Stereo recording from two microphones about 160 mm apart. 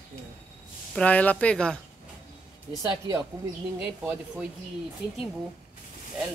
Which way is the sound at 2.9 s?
20° right (ahead or behind).